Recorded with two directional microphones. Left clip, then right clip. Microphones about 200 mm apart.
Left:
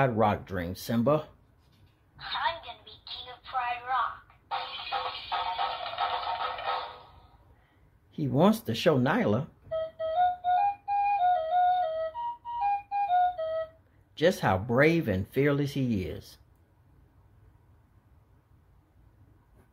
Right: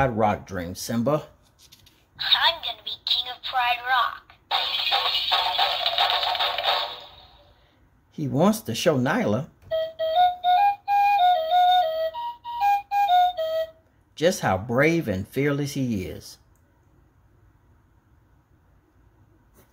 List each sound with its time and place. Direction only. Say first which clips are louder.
0.0 s speech: right 3 dB; 5° right (ahead or behind)
2.1 s telephone: right 10 dB; 35° right (ahead or behind)
8.1 s speech: right 3 dB; 5° right (ahead or behind)
9.7 s flute: right 7 dB; 35° right (ahead or behind)
12.5 s music: right 8 dB; 35° right (ahead or behind)
14.1 s speech: right 3 dB; 5° right (ahead or behind)